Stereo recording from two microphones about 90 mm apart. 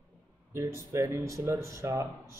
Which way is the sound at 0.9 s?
35° right (ahead or behind).